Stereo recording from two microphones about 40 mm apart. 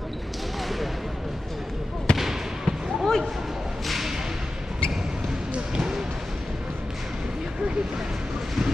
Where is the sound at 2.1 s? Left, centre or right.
Centre.